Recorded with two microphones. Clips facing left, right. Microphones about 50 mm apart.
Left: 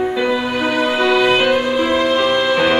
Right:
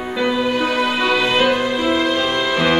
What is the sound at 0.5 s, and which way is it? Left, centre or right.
Music, centre.